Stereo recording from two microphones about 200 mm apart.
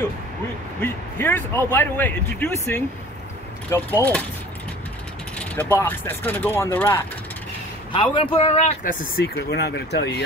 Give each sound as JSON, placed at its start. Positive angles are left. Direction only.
{"t": 0.7, "sound": "speech", "side_deg": 10}
{"t": 5.8, "sound": "speech", "side_deg": 10}
{"t": 7.9, "sound": "a man's voice", "side_deg": 25}
{"t": 8.8, "sound": "speech", "side_deg": 45}